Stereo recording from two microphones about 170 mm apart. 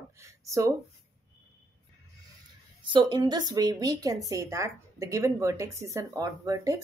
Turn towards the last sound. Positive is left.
turn(degrees=-20)  # may be behind; listen again after turning